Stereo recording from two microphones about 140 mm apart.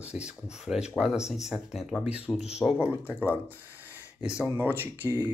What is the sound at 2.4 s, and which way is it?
Speech, 50° left (ahead or behind).